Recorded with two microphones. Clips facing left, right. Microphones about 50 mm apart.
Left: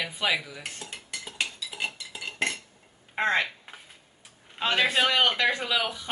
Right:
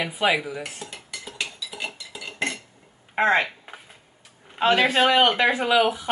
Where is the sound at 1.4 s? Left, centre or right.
Centre.